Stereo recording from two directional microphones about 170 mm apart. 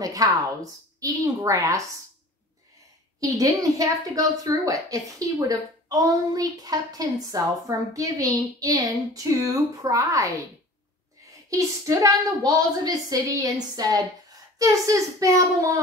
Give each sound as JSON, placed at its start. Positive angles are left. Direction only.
{"t": 0.0, "sound": "a woman's voice", "side_deg": -20}
{"t": 3.2, "sound": "a woman's voice", "side_deg": -20}
{"t": 11.5, "sound": "a woman's voice", "side_deg": -20}